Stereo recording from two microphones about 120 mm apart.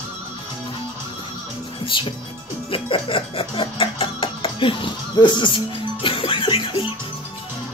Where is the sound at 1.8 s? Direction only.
45° left (ahead or behind).